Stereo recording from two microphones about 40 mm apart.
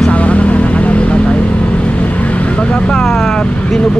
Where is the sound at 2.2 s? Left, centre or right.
Left.